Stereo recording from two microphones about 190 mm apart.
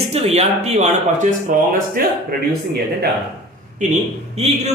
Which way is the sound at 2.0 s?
50° right (ahead or behind).